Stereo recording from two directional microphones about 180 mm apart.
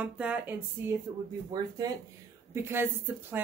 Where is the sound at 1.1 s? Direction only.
20° right (ahead or behind).